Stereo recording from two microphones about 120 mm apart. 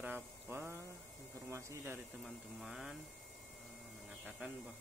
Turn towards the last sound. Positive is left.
turn(degrees=-5)  # may be behind; listen again after turning